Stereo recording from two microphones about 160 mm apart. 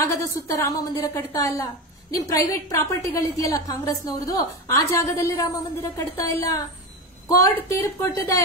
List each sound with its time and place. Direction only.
0.0 s a woman's voice: 15° left (ahead or behind)